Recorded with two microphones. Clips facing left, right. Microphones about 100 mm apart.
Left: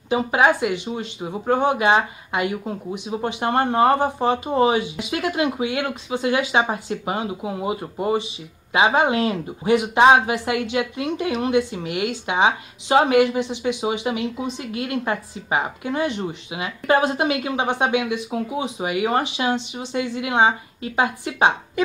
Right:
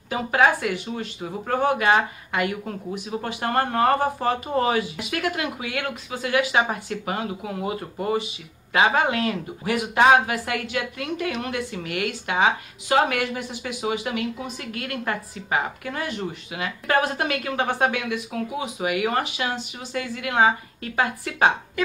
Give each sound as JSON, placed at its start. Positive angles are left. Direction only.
{"t": 0.1, "sound": "speech", "side_deg": 20}